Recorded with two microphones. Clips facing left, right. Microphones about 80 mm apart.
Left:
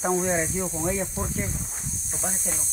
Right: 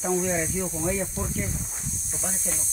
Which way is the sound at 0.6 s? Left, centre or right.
Centre.